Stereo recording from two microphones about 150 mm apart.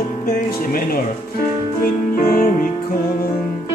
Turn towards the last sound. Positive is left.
turn(degrees=70)  # may be behind; listen again after turning